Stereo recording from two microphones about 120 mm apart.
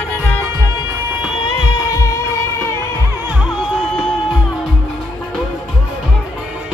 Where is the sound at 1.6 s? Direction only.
25° left (ahead or behind).